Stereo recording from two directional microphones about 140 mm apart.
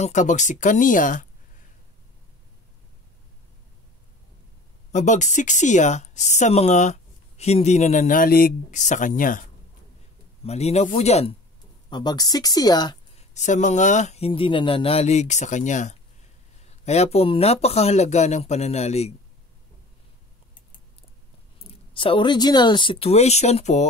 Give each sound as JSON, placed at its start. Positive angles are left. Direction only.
{"t": 0.0, "sound": "speech", "side_deg": 60}
{"t": 4.9, "sound": "speech", "side_deg": 60}
{"t": 10.4, "sound": "speech", "side_deg": 50}
{"t": 11.9, "sound": "speech", "side_deg": 30}
{"t": 13.1, "sound": "speech", "side_deg": 55}
{"t": 21.6, "sound": "speech", "side_deg": 40}